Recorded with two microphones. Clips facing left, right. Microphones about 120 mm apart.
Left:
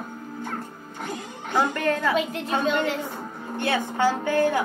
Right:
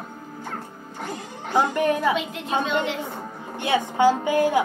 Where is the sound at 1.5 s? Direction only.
15° right (ahead or behind).